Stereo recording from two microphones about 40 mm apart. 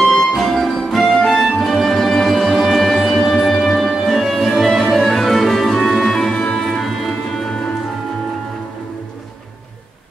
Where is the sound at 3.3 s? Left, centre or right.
Centre.